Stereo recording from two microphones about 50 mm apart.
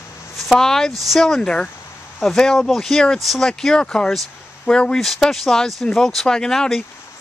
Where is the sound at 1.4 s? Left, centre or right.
Centre.